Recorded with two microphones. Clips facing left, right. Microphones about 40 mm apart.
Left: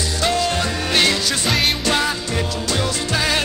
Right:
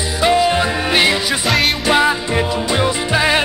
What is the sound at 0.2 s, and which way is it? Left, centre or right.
Music, centre.